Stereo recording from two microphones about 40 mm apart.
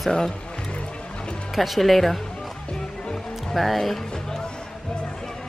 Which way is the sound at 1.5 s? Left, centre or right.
Centre.